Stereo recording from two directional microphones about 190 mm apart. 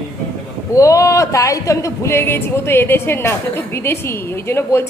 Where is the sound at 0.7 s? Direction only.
15° left (ahead or behind).